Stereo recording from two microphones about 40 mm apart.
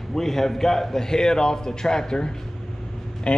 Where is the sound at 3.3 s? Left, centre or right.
Left.